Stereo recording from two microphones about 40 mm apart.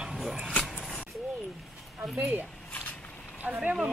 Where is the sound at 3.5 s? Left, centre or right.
Right.